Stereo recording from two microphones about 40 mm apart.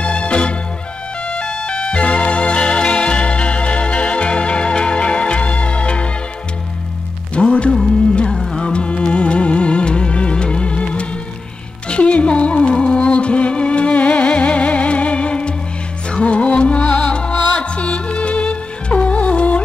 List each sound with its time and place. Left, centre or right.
0.0 s music: left
7.4 s music: left